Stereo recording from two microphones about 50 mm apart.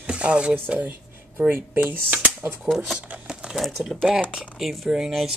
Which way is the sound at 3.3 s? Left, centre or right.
Centre.